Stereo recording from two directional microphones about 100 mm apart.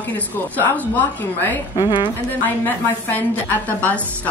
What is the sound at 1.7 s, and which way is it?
Speech, 45° left (ahead or behind).